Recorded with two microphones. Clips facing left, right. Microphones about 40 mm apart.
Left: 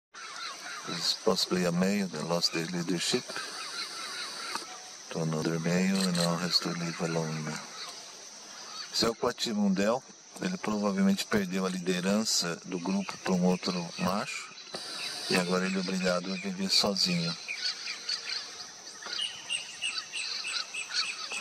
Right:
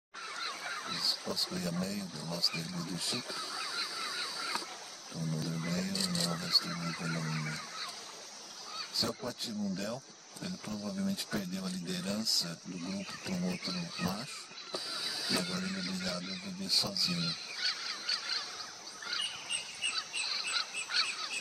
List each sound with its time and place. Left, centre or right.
0.4 s goose: centre
0.9 s speech: left
3.5 s honk: centre
5.1 s speech: left
5.9 s speech: left
6.4 s speech: left
8.9 s speech: left
13.5 s speech: left
13.7 s speech: centre
14.1 s speech: left
15.5 s speech: left
17.6 s honk: centre
19.9 s frog: centre